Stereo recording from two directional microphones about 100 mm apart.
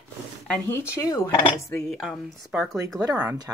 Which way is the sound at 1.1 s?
40° left (ahead or behind).